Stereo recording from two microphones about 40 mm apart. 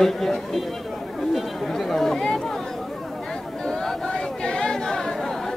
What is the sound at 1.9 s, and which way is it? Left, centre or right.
Chatter, centre.